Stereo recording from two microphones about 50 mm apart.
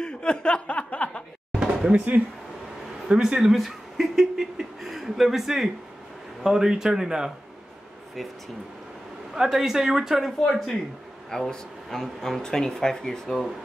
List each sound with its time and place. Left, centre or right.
0.0 s chuckle: centre
1.9 s speech: right
3.1 s a sound: centre
6.4 s a woman's voice: centre
9.3 s a woman's voice: centre
10.4 s speech: centre